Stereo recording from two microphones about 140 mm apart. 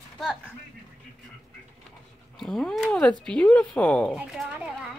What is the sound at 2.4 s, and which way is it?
Speech, 5° left (ahead or behind).